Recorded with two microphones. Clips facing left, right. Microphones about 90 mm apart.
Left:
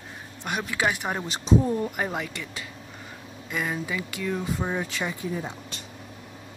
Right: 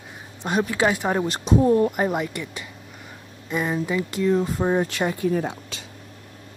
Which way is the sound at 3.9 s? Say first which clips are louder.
Right 9 dB; 30° right (ahead or behind).